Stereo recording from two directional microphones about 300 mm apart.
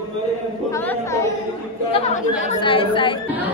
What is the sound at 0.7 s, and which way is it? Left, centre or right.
Speech, centre.